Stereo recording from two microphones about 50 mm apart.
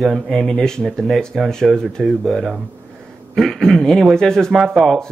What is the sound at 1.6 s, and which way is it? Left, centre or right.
Speech, centre.